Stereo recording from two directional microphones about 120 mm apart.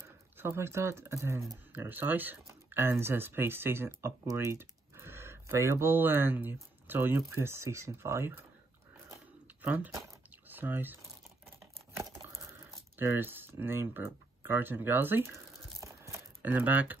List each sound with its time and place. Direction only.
0.4 s speech: 20° right (ahead or behind)
9.1 s a sound: 15° right (ahead or behind)
10.5 s speech: 15° right (ahead or behind)
12.0 s crumpling: 25° right (ahead or behind)